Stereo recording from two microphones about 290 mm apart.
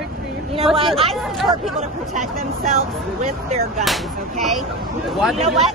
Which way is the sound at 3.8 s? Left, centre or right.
Centre.